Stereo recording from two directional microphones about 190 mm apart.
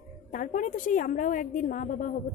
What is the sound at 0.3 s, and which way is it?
A woman's voice, 45° left (ahead or behind).